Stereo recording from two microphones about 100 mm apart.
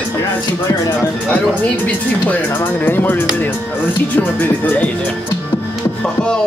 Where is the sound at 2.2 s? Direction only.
20° left (ahead or behind).